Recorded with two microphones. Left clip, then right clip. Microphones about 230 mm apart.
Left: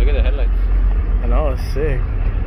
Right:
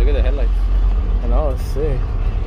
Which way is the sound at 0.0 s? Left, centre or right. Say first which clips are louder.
Right 1 dB; right.